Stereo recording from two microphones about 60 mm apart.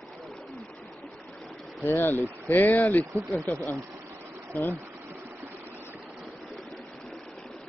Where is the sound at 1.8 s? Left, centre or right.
Left.